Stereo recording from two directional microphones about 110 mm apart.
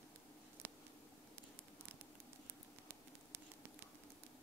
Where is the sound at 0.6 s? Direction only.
20° right (ahead or behind).